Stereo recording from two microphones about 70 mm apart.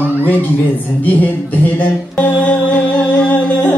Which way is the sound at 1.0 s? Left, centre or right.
Left.